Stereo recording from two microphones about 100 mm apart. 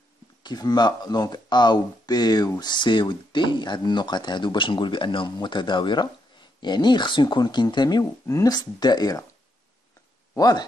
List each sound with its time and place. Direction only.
0.4 s speech: 45° left (ahead or behind)
10.3 s speech: 40° left (ahead or behind)